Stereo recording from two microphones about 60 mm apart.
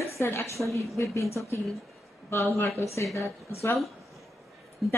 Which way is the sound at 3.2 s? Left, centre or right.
Left.